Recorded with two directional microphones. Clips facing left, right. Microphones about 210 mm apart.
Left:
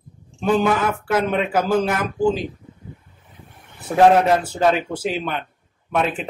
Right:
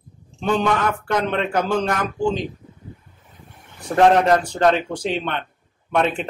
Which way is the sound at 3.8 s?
5° left (ahead or behind).